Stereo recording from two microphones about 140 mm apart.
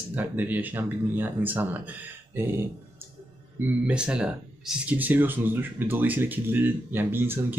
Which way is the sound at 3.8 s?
10° right (ahead or behind).